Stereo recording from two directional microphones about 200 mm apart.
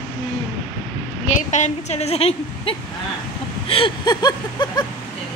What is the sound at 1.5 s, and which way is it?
A woman's voice, 35° left (ahead or behind).